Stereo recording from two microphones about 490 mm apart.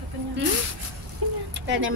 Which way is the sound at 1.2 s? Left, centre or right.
Right.